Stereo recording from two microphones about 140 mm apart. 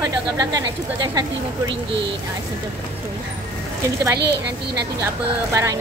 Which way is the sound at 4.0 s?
20° right (ahead or behind).